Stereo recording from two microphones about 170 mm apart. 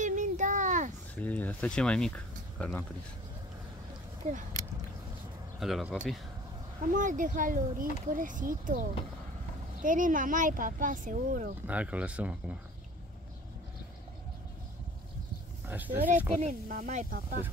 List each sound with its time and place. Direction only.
0.0 s a sound: 45° right (ahead or behind)
1.2 s speech: 10° left (ahead or behind)
4.2 s speech: 40° right (ahead or behind)
5.6 s speech: centre (ahead or behind)
6.8 s speech: 50° right (ahead or behind)
11.6 s speech: 10° right (ahead or behind)
15.6 s a sound: 10° right (ahead or behind)
16.3 s speech: 50° right (ahead or behind)